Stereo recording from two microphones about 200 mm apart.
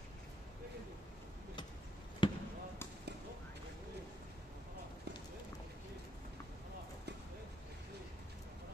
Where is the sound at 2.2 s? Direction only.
25° left (ahead or behind).